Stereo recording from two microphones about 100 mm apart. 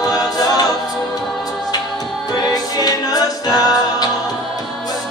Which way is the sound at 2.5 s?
40° left (ahead or behind).